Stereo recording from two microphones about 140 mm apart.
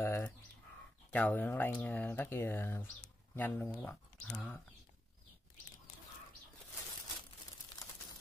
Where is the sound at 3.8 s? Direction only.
10° left (ahead or behind).